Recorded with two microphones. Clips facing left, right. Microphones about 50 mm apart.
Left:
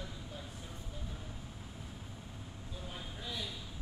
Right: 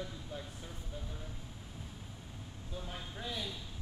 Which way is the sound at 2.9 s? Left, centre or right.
Centre.